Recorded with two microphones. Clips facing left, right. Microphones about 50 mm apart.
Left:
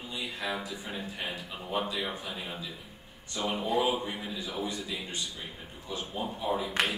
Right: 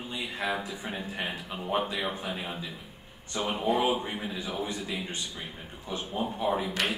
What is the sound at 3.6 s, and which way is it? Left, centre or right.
A man's voice, right.